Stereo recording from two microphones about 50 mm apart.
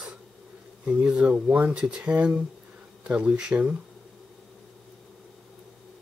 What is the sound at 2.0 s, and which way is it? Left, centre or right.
Speech, right.